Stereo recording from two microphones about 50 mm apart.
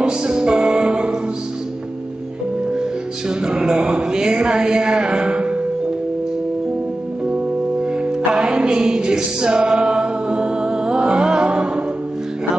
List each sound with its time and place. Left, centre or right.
0.0 s music: centre
2.7 s music: centre
8.3 s music: centre
8.5 s choir: centre